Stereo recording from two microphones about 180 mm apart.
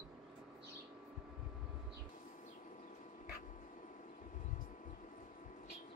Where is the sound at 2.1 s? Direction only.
45° left (ahead or behind).